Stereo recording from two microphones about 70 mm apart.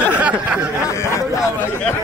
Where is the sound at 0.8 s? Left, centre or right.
Left.